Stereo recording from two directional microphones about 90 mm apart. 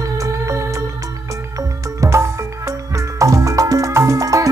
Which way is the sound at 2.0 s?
40° right (ahead or behind).